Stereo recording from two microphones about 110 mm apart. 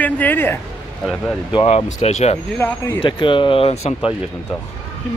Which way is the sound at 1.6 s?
75° left (ahead or behind).